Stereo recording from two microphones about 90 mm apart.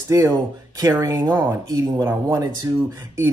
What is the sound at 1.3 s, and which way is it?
Speech, 30° right (ahead or behind).